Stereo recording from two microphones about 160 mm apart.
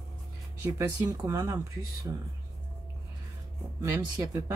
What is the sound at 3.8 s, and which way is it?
Speech, 20° right (ahead or behind).